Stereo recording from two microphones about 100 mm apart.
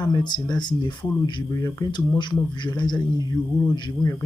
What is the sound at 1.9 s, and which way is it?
Speech, 50° left (ahead or behind).